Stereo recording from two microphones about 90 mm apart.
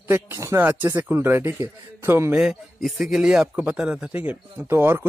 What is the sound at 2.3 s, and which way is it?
Speech, 5° right (ahead or behind).